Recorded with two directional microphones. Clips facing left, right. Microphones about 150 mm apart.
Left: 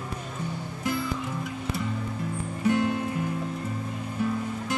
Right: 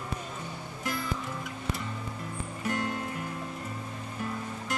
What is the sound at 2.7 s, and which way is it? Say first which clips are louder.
Music: left 8 dB; 20° left (ahead or behind).